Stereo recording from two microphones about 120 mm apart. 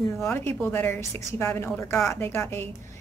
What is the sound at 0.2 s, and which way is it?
A woman's voice, 20° left (ahead or behind).